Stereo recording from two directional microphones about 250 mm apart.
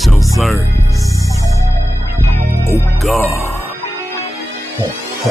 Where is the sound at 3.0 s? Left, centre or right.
Centre.